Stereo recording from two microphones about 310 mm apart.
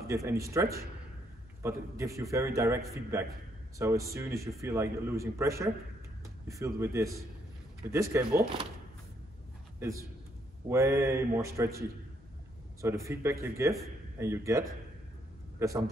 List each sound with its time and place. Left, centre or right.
0.1 s a man's voice: centre
10.7 s a man's voice: centre
12.8 s a man's voice: centre
15.6 s a man's voice: centre